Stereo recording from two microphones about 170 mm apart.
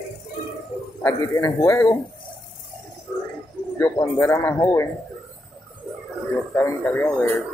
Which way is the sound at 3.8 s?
15° left (ahead or behind).